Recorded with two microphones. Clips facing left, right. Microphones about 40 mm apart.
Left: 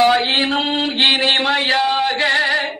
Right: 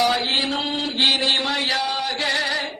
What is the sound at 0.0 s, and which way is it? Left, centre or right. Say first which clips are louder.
Mantra: left 6 dB; left.